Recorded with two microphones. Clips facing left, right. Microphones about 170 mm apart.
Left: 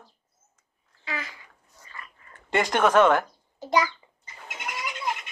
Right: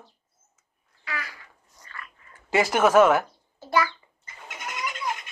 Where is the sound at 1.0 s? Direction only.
25° left (ahead or behind).